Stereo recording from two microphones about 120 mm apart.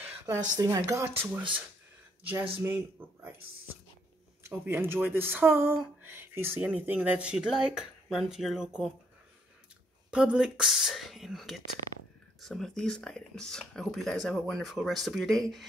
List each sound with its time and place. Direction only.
0.0 s a sound: 20° right (ahead or behind)
0.6 s speech: 30° right (ahead or behind)
2.6 s speech: 20° right (ahead or behind)
4.4 s speech: 20° right (ahead or behind); by 8.9 s 5° right (ahead or behind)
10.1 s speech: 10° right (ahead or behind)